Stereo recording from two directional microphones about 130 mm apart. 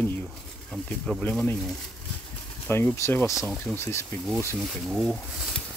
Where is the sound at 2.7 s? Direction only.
20° left (ahead or behind).